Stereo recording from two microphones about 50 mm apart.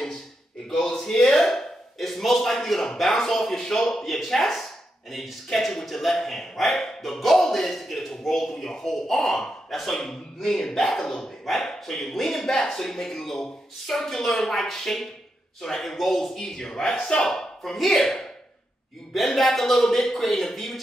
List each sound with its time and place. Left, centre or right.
0.7 s speech: centre